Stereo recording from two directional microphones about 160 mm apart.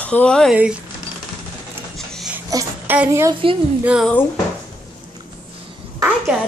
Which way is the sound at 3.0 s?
20° right (ahead or behind).